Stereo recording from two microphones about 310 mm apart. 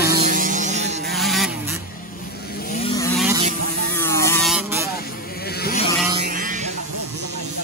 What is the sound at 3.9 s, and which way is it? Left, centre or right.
Buzz, centre.